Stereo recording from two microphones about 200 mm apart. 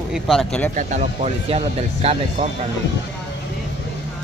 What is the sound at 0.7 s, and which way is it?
Speech, 35° right (ahead or behind).